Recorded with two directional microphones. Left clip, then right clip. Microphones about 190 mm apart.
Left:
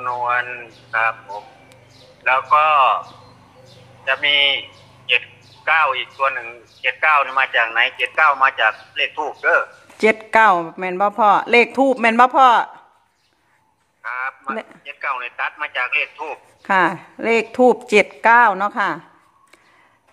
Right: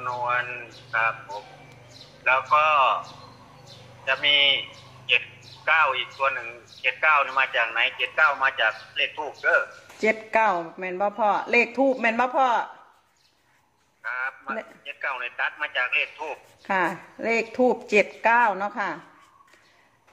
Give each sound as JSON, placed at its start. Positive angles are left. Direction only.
{"t": 0.0, "sound": "a man's voice", "side_deg": 20}
{"t": 4.0, "sound": "a man's voice", "side_deg": 20}
{"t": 14.0, "sound": "a man's voice", "side_deg": 20}